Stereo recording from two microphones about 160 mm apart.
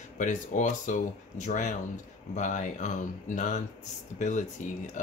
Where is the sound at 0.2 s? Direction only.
50° left (ahead or behind).